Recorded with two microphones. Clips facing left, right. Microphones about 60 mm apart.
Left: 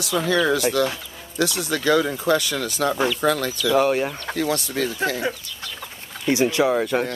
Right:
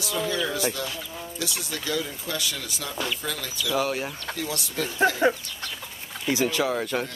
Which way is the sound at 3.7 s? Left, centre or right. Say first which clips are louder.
Left 7 dB; left.